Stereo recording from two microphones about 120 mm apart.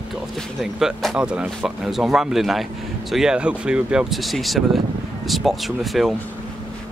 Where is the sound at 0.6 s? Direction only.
Centre (ahead or behind).